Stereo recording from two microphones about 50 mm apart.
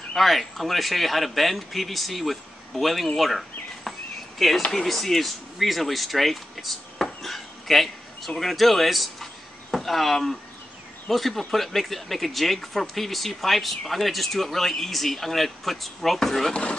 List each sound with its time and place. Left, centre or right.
0.1 s speech: centre
3.2 s a sound: centre
4.4 s speech: centre